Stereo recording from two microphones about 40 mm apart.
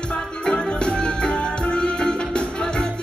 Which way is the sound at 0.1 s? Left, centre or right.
Left.